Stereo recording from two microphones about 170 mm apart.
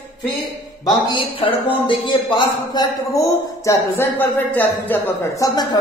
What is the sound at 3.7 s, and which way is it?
Speech, 10° left (ahead or behind).